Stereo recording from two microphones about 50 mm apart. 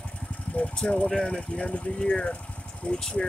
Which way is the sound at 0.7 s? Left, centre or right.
Left.